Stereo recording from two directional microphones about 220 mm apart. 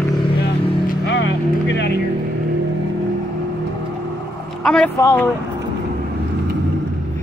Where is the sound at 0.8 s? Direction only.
50° left (ahead or behind).